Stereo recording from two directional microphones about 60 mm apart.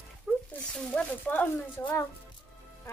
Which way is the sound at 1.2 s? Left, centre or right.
Left.